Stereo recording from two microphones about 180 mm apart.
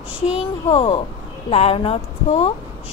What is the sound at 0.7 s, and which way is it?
A woman's voice, 30° left (ahead or behind).